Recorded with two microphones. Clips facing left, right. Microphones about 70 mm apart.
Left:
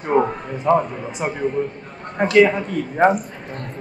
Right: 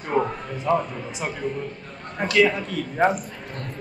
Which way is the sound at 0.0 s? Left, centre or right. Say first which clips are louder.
Left 5 dB; centre.